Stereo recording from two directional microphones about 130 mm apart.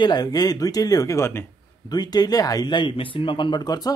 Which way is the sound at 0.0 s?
30° left (ahead or behind).